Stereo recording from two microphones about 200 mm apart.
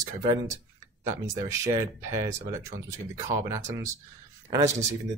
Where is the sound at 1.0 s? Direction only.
15° right (ahead or behind).